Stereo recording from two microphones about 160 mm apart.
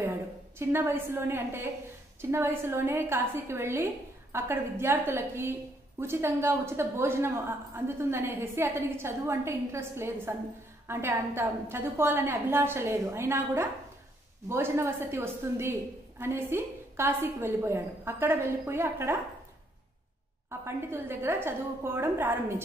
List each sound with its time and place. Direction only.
0.0 s a woman's voice: 15° right (ahead or behind)
20.4 s a woman's voice: 15° right (ahead or behind)